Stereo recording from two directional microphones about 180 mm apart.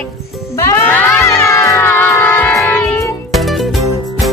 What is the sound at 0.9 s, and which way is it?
Music, 10° left (ahead or behind).